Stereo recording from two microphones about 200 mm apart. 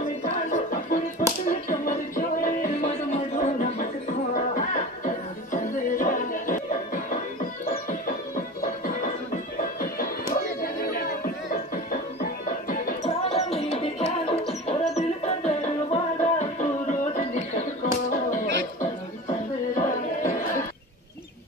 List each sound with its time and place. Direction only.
0.2 s music: 40° left (ahead or behind)
8.5 s music: 45° left (ahead or behind)
13.2 s music: 30° left (ahead or behind)